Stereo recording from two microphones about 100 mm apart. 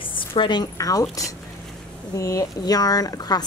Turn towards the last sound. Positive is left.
turn(degrees=40)  # may be behind; listen again after turning